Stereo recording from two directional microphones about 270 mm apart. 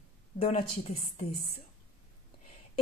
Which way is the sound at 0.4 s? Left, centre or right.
Left.